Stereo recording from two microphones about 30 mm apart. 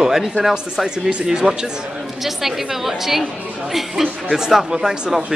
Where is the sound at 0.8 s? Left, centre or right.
Right.